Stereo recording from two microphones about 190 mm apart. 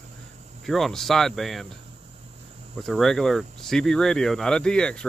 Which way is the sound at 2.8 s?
Centre (ahead or behind).